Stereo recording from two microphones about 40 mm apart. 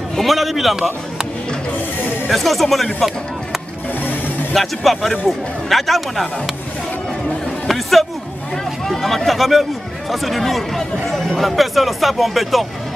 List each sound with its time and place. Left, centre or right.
0.2 s speech: centre
2.3 s speech: centre
4.6 s speech: centre
7.6 s a sound: centre
8.8 s speech: centre